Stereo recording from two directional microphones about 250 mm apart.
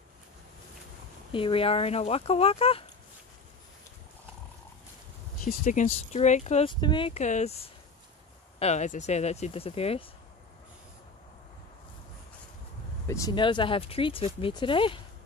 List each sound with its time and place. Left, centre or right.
1.3 s speech: left
5.4 s speech: left
13.0 s speech: centre